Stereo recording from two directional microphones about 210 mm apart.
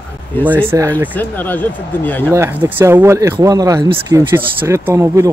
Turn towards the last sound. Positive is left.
turn(degrees=-15)  # may be behind; listen again after turning